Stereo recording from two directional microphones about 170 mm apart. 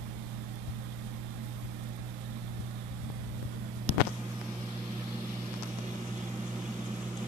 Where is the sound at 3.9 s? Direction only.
35° left (ahead or behind).